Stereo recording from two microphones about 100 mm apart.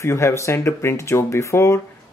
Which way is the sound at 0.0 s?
25° left (ahead or behind).